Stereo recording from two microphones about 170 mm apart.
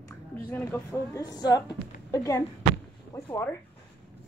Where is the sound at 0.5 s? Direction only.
10° left (ahead or behind).